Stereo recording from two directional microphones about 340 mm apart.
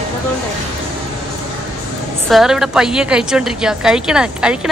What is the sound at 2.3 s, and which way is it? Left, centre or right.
Speech, centre.